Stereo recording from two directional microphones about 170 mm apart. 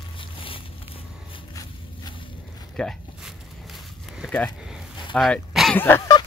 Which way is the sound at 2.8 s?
Centre (ahead or behind).